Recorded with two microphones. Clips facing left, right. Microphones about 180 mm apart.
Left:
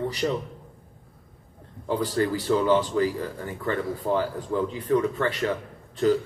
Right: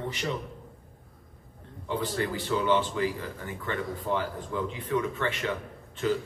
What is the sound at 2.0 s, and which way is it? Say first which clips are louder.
A man's voice: left 6 dB; 40° left (ahead or behind).